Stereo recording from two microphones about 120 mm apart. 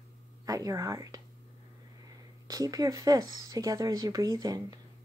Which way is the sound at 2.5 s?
30° right (ahead or behind).